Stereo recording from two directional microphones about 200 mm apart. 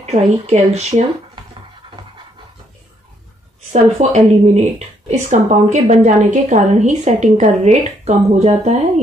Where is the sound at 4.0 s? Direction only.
40° right (ahead or behind).